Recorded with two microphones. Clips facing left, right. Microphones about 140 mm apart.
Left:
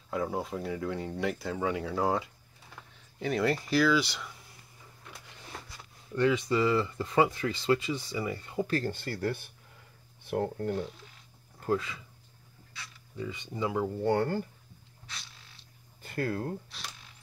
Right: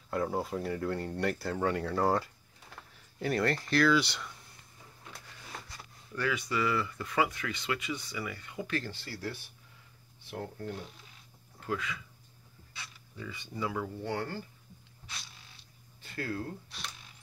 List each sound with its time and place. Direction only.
0.1 s speech: centre (ahead or behind)
6.1 s speech: 25° left (ahead or behind); by 10.8 s 55° left (ahead or behind)
11.6 s speech: 30° left (ahead or behind)
13.2 s speech: 20° left (ahead or behind)
14.0 s speech: 50° left (ahead or behind)
16.0 s speech: 50° left (ahead or behind)